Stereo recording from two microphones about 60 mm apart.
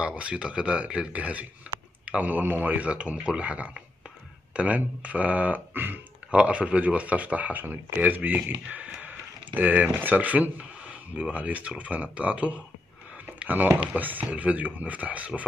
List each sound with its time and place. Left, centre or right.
0.0 s speech: right
6.3 s speech: centre
9.0 s a sound: right
9.9 s speech: right